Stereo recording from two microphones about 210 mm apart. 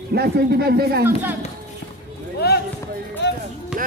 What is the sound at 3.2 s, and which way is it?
Music, 55° left (ahead or behind).